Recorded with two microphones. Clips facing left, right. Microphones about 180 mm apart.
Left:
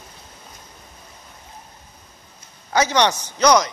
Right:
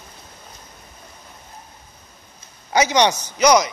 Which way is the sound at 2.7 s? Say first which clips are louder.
Right 1 dB; 15° right (ahead or behind).